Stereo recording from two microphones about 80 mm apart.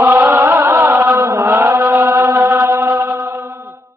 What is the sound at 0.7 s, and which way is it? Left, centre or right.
Music, right.